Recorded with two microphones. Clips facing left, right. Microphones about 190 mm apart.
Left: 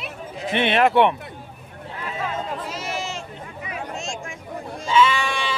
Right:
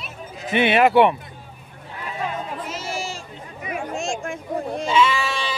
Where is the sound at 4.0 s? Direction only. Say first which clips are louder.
Right 5 dB; 55° right (ahead or behind).